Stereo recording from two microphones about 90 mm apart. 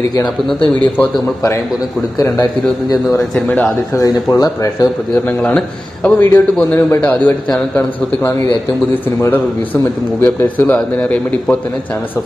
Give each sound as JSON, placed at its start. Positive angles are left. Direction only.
{"t": 2.1, "sound": "a man's voice", "side_deg": 40}
{"t": 3.9, "sound": "speech", "side_deg": 40}
{"t": 5.1, "sound": "a man's voice", "side_deg": 15}
{"t": 7.7, "sound": "a man's voice", "side_deg": 30}
{"t": 10.2, "sound": "a man's voice", "side_deg": 20}